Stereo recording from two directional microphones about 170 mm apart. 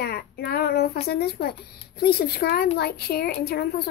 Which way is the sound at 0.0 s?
65° left (ahead or behind).